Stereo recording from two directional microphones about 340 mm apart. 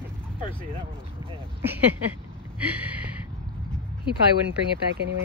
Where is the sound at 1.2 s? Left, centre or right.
Centre.